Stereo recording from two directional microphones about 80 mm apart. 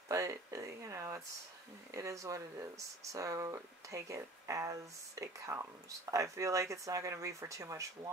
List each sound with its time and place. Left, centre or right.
0.1 s speech: right